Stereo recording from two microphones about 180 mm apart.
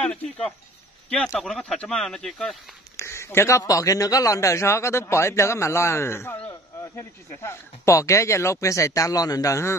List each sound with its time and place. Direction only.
0.0 s speech: 5° left (ahead or behind)
3.0 s a man's voice: 15° left (ahead or behind)